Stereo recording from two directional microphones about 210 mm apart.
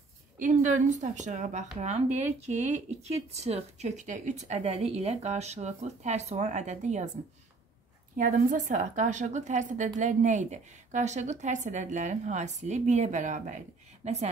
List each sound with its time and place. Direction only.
0.4 s a woman's voice: 35° right (ahead or behind)
8.2 s a woman's voice: 40° right (ahead or behind)